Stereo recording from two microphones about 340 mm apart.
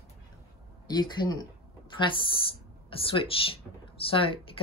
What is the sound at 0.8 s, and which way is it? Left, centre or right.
Speech, centre.